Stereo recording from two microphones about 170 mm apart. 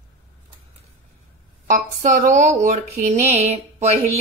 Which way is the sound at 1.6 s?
45° right (ahead or behind).